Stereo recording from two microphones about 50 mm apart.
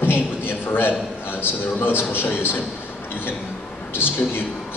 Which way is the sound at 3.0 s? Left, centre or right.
Left.